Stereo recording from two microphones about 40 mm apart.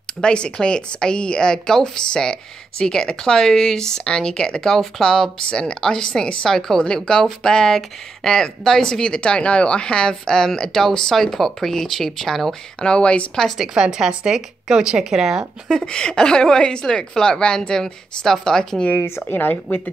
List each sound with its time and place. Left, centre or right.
0.0 s speech: left
12.8 s speech: left
13.6 s a woman's voice: centre
15.8 s speech: left
18.9 s speech: left
19.2 s speech: left